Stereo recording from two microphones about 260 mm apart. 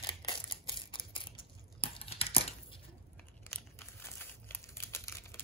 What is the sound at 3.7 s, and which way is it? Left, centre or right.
Crumpling, centre.